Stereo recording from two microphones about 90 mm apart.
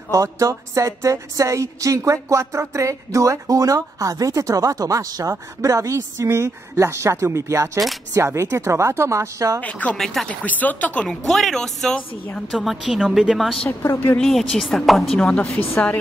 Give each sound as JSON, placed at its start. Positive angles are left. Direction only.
{"t": 0.1, "sound": "a sound", "side_deg": -35}
{"t": 9.6, "sound": "speech", "side_deg": 15}
{"t": 9.9, "sound": "a woman's voice", "side_deg": 5}
{"t": 10.4, "sound": "speech", "side_deg": 20}
{"t": 11.2, "sound": "a woman's voice", "side_deg": 5}
{"t": 13.9, "sound": "speech", "side_deg": 15}
{"t": 14.2, "sound": "a woman's voice", "side_deg": 0}